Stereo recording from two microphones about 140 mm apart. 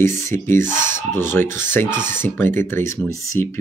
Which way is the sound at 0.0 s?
20° left (ahead or behind).